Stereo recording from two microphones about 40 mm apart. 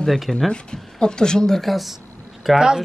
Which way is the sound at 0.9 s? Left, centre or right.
Centre.